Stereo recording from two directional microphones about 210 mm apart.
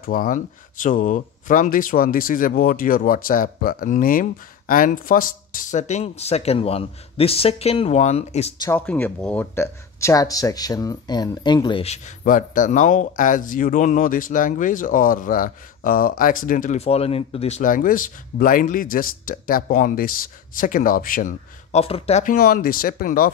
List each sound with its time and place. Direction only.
0.0 s speech: 40° left (ahead or behind)
8.5 s speech: 10° left (ahead or behind); by 23.3 s 45° left (ahead or behind)